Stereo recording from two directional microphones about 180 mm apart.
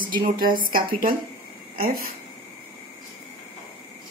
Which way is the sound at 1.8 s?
55° right (ahead or behind).